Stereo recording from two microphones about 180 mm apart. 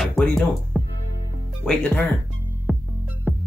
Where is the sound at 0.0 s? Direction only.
Centre (ahead or behind).